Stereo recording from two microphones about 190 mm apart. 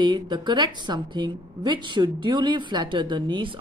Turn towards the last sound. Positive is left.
turn(degrees=-25)  # may be behind; listen again after turning